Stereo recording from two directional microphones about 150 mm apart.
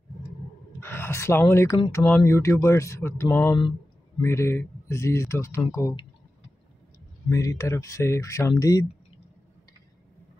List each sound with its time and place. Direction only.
0.7 s speech: 15° left (ahead or behind)
7.2 s speech: 20° left (ahead or behind)